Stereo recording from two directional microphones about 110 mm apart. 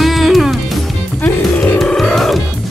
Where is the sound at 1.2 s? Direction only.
15° left (ahead or behind).